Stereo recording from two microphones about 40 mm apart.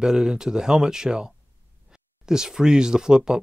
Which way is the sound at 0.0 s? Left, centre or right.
Centre.